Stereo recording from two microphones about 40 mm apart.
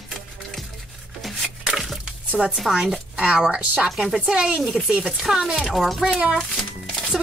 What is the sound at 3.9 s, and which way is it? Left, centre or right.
Speech, centre.